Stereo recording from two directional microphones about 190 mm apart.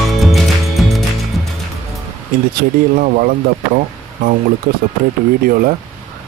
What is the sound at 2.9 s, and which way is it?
Speech, 45° right (ahead or behind).